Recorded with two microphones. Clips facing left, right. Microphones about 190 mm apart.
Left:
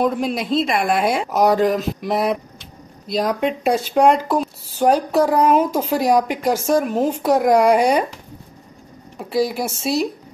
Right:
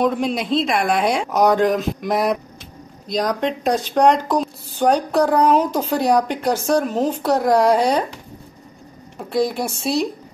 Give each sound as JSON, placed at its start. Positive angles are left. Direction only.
{"t": 0.0, "sound": "speech", "side_deg": 0}
{"t": 9.2, "sound": "speech", "side_deg": 5}